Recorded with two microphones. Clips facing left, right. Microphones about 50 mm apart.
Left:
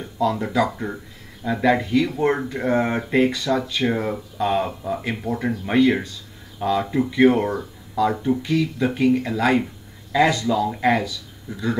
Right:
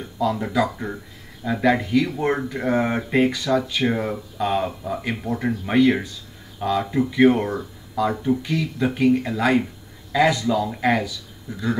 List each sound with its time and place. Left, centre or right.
0.2 s speech: centre